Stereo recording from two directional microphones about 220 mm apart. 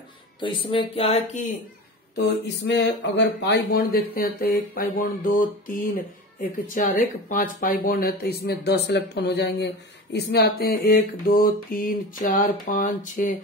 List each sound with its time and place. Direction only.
0.4 s speech: 25° left (ahead or behind)
2.1 s speech: 50° left (ahead or behind)
10.1 s a sound: 50° left (ahead or behind)